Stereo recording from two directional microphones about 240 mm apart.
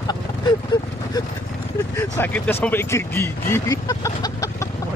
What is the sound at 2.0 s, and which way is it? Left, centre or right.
Speech, centre.